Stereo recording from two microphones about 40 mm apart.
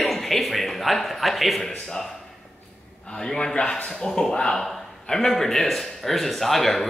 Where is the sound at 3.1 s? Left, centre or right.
Left.